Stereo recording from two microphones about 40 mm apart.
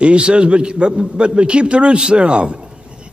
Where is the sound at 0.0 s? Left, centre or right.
Right.